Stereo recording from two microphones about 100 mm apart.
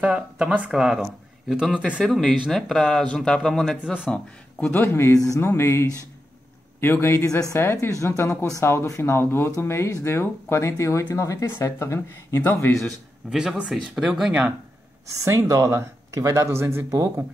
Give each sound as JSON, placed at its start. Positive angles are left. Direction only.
{"t": 0.0, "sound": "speech", "side_deg": -10}
{"t": 2.0, "sound": "speech", "side_deg": 5}
{"t": 4.7, "sound": "speech", "side_deg": 25}
{"t": 13.3, "sound": "speech", "side_deg": -5}
{"t": 15.2, "sound": "speech", "side_deg": -30}